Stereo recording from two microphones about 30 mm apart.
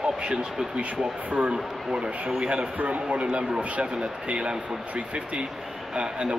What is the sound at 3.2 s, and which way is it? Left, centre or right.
Speech, right.